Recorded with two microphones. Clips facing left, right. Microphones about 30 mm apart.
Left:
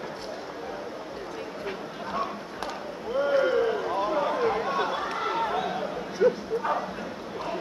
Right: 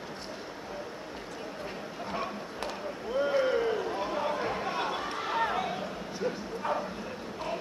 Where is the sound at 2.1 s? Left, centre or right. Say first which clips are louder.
Left 5 dB; centre.